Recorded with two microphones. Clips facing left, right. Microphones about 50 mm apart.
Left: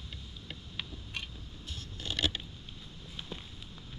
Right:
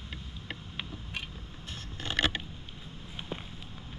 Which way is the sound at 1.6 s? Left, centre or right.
Right.